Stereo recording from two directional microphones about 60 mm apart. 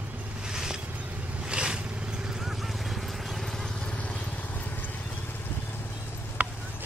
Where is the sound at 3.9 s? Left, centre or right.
Left.